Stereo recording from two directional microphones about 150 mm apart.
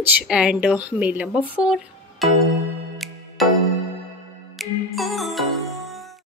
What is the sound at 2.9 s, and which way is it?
Music, centre (ahead or behind).